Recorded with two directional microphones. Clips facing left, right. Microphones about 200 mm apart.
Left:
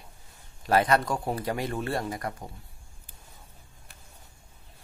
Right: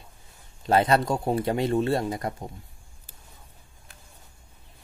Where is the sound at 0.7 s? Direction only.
25° right (ahead or behind).